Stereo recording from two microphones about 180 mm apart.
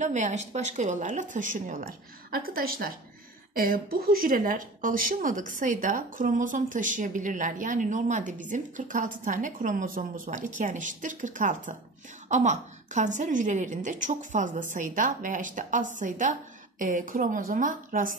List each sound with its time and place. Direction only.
0.0 s speech: 40° right (ahead or behind)